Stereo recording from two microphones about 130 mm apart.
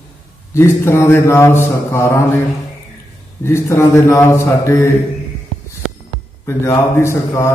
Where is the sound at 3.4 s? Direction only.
20° left (ahead or behind).